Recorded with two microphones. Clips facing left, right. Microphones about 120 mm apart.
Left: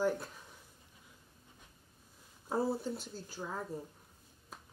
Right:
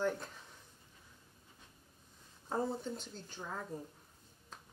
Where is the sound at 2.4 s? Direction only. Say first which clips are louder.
Left 3 dB; 10° left (ahead or behind).